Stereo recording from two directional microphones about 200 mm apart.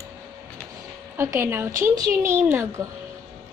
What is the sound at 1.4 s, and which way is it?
Speech, 10° right (ahead or behind).